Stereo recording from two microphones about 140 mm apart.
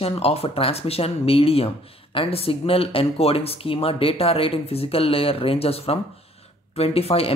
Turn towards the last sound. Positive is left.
turn(degrees=45)  # may be behind; listen again after turning